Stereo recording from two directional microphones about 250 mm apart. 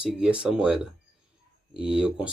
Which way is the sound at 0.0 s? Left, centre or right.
Centre.